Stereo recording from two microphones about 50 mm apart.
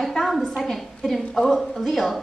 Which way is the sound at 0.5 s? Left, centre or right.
Centre.